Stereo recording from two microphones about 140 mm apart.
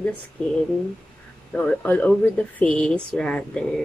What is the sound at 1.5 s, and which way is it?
Speech, 10° left (ahead or behind).